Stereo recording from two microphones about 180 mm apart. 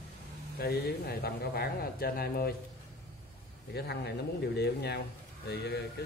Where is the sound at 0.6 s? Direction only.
60° left (ahead or behind).